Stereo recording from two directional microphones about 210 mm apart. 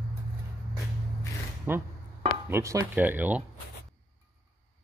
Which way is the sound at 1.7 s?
10° right (ahead or behind).